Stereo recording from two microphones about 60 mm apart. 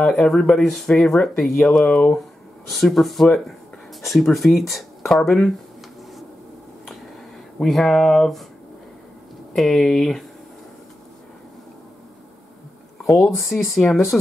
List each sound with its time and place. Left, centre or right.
0.0 s speech: centre
1.9 s speech: centre
2.7 s speech: centre
7.5 s speech: centre
9.6 s speech: centre
13.3 s speech: centre